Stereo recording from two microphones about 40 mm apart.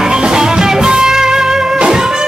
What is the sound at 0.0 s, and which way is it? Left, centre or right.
Music, centre.